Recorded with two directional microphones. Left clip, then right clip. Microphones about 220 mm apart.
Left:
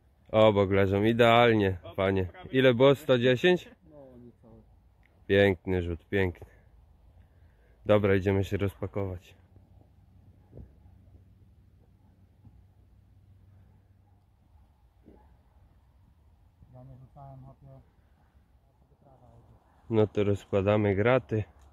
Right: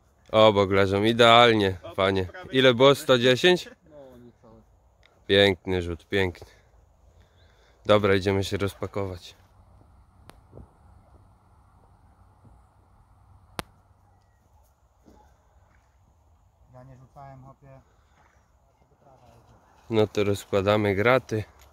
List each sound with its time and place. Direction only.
0.3 s speech: 10° right (ahead or behind)
2.2 s speech: 50° right (ahead or behind)
2.5 s speech: 5° right (ahead or behind)
5.0 s speech: 10° right (ahead or behind)
7.8 s speech: 5° right (ahead or behind)
16.7 s a sound: 15° right (ahead or behind)
19.9 s speech: 10° right (ahead or behind)